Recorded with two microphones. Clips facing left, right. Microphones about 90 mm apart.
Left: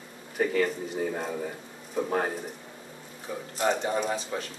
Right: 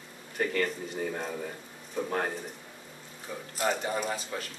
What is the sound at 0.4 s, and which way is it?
Speech, 5° left (ahead or behind).